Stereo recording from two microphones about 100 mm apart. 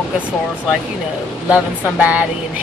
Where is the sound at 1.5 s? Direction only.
15° right (ahead or behind).